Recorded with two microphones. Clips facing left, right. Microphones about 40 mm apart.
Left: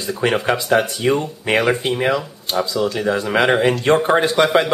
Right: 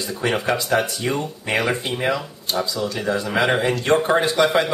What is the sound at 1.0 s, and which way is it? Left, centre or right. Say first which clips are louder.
Speech: left 5 dB; centre.